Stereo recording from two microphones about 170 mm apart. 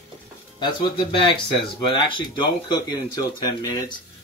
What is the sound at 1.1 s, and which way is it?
Speech, 30° left (ahead or behind).